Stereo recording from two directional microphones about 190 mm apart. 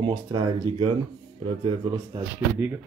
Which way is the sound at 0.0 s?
25° right (ahead or behind).